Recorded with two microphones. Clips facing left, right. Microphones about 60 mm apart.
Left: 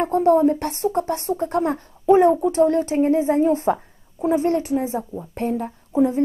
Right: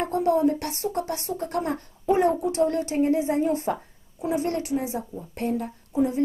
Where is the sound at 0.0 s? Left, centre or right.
Left.